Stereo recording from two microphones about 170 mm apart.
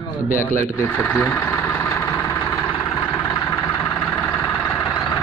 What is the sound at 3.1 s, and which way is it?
Vehicle, 15° left (ahead or behind).